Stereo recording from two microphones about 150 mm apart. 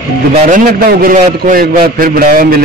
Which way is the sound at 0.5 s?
70° right (ahead or behind).